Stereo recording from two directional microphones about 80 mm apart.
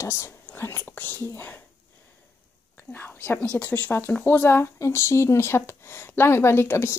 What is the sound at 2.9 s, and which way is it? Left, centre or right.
Speech, left.